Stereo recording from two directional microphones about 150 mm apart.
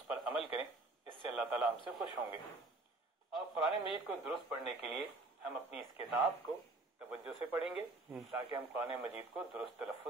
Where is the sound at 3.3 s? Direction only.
5° right (ahead or behind).